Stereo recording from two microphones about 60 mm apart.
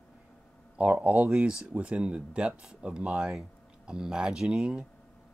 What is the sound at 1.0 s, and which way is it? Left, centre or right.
Speech, right.